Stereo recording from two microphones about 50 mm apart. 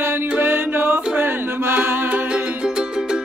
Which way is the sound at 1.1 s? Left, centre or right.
Right.